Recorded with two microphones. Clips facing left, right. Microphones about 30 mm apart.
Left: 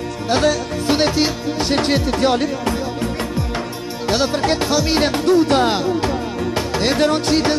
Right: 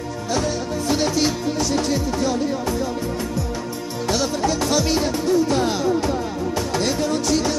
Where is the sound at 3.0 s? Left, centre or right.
Left.